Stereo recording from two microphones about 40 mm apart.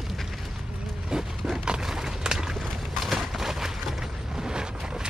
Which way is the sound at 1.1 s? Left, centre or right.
Centre.